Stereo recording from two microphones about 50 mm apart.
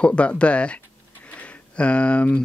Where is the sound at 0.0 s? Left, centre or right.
Left.